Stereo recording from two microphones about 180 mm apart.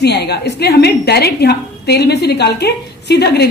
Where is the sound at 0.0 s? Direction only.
65° left (ahead or behind).